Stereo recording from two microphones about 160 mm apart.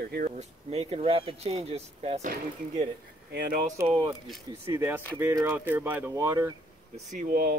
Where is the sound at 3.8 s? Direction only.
30° right (ahead or behind).